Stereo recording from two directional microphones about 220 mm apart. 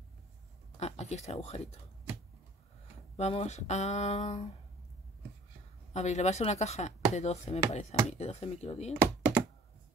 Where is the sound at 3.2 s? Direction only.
30° left (ahead or behind).